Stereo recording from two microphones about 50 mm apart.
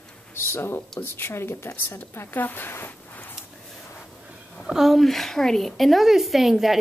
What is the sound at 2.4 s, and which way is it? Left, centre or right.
Speech, left.